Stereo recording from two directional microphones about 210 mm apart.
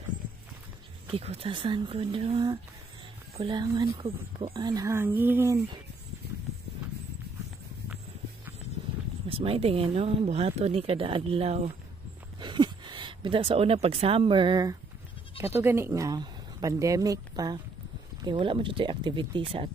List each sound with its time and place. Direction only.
1.1 s a woman's voice: 30° right (ahead or behind)
9.3 s a woman's voice: 25° right (ahead or behind)